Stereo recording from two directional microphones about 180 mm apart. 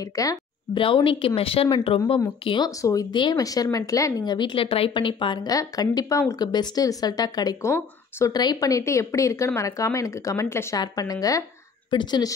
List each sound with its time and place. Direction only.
0.0 s speech: 20° left (ahead or behind)
0.8 s speech: 30° left (ahead or behind)